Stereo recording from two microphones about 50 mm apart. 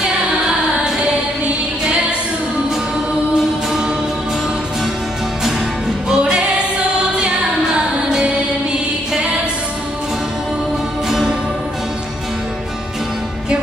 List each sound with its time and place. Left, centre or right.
6.0 s music: centre
11.1 s music: centre